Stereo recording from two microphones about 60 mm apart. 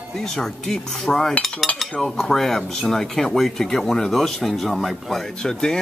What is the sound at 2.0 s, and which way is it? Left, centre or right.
Speech, centre.